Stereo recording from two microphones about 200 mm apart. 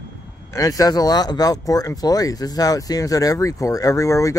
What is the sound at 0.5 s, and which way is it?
Speech, 15° left (ahead or behind).